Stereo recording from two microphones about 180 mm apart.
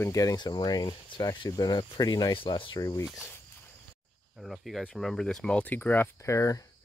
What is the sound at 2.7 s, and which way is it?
Speech, 15° left (ahead or behind).